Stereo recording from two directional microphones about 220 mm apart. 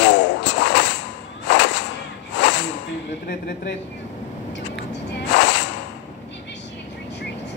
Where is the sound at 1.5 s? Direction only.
55° left (ahead or behind).